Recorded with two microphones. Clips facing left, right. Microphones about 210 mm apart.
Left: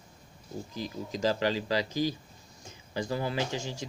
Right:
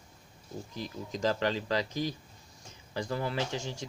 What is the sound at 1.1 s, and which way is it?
Speech, 5° left (ahead or behind).